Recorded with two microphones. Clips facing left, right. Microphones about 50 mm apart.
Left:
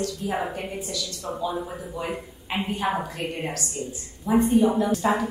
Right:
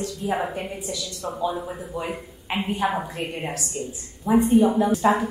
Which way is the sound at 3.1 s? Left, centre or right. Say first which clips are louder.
Even; centre.